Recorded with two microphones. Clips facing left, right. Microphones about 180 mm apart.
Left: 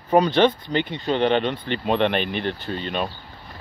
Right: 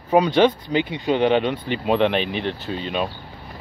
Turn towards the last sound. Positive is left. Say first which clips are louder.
# right 1 dB
turn(degrees=-5)  # may be behind; listen again after turning